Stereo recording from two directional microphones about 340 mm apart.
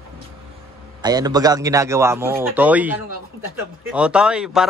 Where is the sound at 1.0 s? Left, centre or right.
Centre.